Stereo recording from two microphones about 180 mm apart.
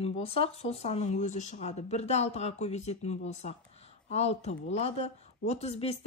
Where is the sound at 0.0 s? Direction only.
35° left (ahead or behind).